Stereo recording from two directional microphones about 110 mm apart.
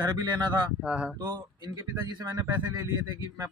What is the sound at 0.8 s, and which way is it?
Speech, 10° right (ahead or behind).